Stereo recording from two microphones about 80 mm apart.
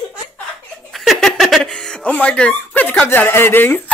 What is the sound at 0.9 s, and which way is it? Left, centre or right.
Music, centre.